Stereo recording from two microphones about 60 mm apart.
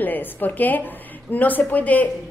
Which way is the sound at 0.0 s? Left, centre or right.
Left.